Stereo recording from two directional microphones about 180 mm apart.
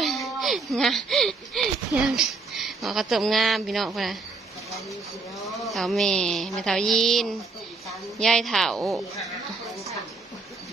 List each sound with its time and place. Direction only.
0.0 s speech: centre (ahead or behind)
5.6 s a woman's voice: centre (ahead or behind)